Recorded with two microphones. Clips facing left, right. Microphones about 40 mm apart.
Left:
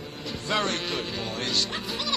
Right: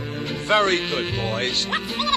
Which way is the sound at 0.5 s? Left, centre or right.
Right.